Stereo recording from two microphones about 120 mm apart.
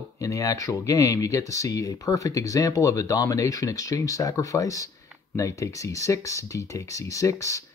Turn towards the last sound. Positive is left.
turn(degrees=25)  # may be behind; listen again after turning